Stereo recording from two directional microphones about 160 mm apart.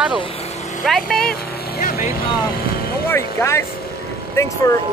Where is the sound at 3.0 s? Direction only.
15° left (ahead or behind).